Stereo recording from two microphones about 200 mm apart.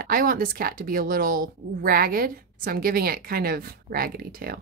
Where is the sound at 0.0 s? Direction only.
45° right (ahead or behind).